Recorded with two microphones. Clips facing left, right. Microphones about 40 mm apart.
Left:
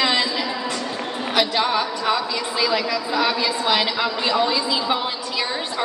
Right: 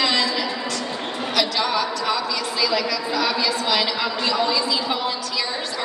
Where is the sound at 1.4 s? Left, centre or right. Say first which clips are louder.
Left 2 dB; left.